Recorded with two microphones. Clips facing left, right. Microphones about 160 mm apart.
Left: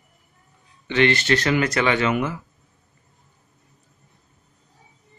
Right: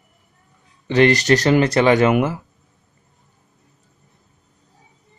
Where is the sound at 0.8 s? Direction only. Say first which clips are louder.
Right 5 dB; 40° right (ahead or behind).